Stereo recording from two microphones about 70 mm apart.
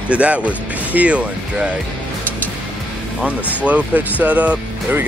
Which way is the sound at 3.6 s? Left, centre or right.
Centre.